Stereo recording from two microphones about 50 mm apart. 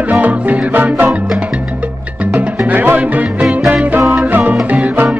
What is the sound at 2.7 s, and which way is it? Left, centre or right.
Music, right.